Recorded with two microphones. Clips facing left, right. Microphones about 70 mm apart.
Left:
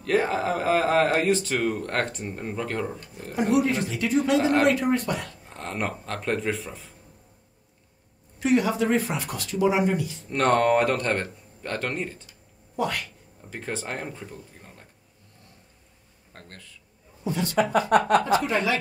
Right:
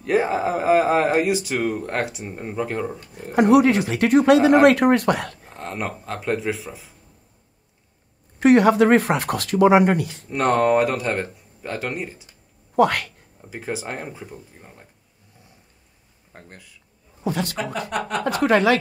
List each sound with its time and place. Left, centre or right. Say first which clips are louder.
0.0 s speech: right 3 dB; centre
3.3 s speech: right 8 dB; right
5.5 s speech: left 1 dB; centre
8.4 s speech: right 8 dB; right
10.3 s speech: right 2 dB; centre
12.7 s speech: right 10 dB; right
13.4 s speech: right 3 dB; centre
16.3 s speech: right 2 dB; centre
17.2 s a woman's voice: right 3 dB; right
17.9 s speech: left 7 dB; left
18.4 s a woman's voice: right 8 dB; right